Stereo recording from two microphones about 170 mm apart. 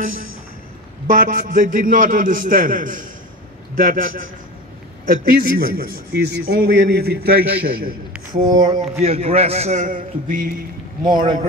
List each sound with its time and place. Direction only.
0.0 s a man's voice: 55° right (ahead or behind)
8.5 s a man's voice: 40° right (ahead or behind)